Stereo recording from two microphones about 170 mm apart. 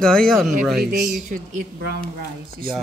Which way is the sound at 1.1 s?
45° right (ahead or behind).